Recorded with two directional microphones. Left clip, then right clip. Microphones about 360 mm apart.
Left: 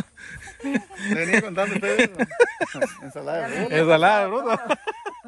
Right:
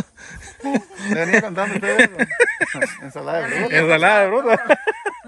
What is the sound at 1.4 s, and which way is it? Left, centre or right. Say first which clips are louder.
Speech: right 2 dB; right.